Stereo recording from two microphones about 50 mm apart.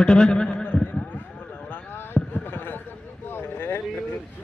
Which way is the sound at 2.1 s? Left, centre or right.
Left.